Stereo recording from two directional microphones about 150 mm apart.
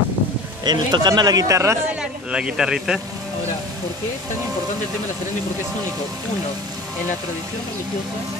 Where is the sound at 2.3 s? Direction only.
5° right (ahead or behind).